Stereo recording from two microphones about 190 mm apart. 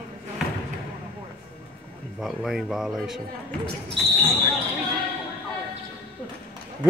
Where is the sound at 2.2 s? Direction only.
Centre (ahead or behind).